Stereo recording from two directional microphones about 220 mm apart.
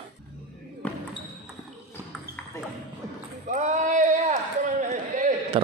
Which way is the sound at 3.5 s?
35° right (ahead or behind).